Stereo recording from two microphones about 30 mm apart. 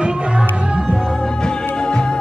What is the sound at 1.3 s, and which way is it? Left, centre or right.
Music, left.